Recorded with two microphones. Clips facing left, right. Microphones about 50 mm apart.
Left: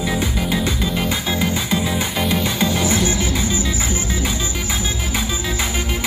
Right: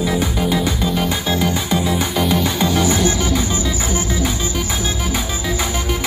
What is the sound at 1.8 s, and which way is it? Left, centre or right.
Music, centre.